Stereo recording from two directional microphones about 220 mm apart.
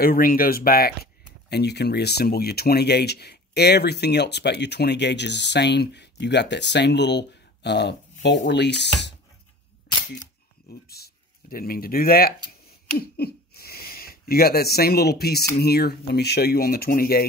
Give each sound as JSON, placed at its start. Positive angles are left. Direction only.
{"t": 0.0, "sound": "speech", "side_deg": 40}
{"t": 10.7, "sound": "a sound", "side_deg": 45}
{"t": 15.5, "sound": "speech", "side_deg": 45}